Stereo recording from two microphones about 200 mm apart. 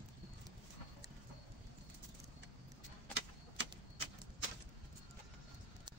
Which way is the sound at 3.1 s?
60° right (ahead or behind).